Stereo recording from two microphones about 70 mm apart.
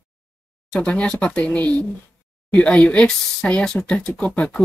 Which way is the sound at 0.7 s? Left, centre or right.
Centre.